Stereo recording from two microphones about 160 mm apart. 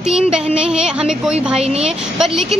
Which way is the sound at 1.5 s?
40° right (ahead or behind).